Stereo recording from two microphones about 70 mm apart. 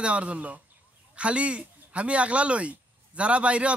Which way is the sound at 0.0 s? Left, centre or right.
Centre.